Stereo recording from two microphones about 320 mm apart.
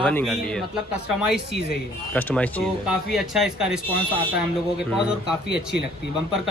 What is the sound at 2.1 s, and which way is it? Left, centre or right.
A man's voice, centre.